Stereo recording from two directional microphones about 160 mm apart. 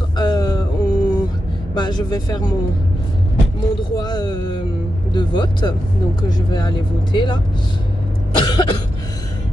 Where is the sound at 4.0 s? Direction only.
25° left (ahead or behind).